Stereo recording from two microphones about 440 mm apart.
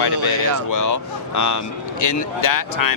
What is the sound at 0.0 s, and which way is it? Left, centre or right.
Speech, left.